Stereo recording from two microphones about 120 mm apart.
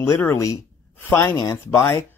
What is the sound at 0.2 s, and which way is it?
Speech, 25° left (ahead or behind).